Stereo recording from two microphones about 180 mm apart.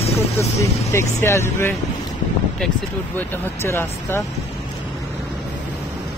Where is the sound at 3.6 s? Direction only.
15° left (ahead or behind).